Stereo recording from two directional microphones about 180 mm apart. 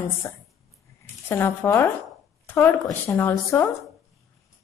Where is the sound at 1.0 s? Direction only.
10° left (ahead or behind).